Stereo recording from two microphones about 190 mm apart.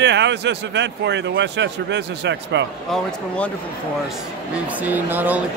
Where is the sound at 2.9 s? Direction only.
5° left (ahead or behind).